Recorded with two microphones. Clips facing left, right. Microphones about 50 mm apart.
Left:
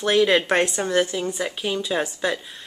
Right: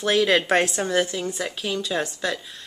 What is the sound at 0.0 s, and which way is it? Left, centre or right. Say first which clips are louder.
Speech: left 2 dB; centre.